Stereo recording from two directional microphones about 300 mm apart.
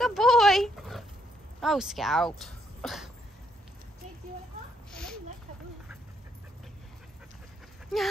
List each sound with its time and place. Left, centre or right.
0.0 s oink: centre
1.6 s speech: centre
4.9 s a sound: centre
7.9 s speech: centre